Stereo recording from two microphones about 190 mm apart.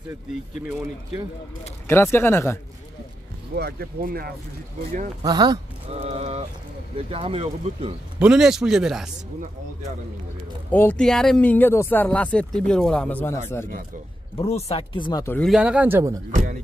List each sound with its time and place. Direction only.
1.9 s speech: 10° left (ahead or behind)
3.5 s speech: 55° right (ahead or behind)
5.2 s speech: 20° right (ahead or behind)
8.2 s a man's voice: 5° right (ahead or behind)
10.7 s speech: 10° left (ahead or behind)
14.4 s speech: 35° left (ahead or behind)
15.2 s speech: 10° left (ahead or behind)
15.5 s speech: 5° right (ahead or behind)
16.3 s speech: 40° right (ahead or behind)